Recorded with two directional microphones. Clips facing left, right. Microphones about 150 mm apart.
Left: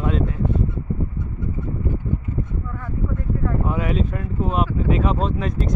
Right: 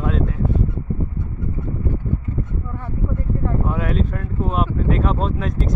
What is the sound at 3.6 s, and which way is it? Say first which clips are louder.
Speech: even; centre (ahead or behind).